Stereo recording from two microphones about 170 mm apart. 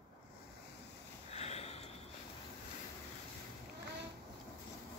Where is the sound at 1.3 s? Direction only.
40° left (ahead or behind).